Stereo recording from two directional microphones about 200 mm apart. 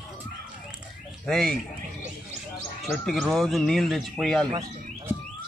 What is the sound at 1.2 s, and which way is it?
Speech, centre (ahead or behind).